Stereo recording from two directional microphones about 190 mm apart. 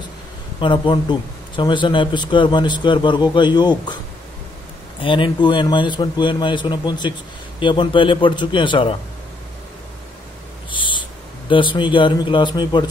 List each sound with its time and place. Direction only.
0.6 s a man's voice: 25° left (ahead or behind)
5.0 s a man's voice: 25° left (ahead or behind)
10.7 s speech: 25° left (ahead or behind)